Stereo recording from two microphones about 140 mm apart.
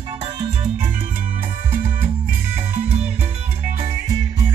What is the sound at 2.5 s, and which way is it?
Music, 10° right (ahead or behind).